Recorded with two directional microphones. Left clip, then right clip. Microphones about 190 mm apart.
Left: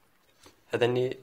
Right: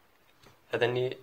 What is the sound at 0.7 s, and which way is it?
Speech, 35° left (ahead or behind).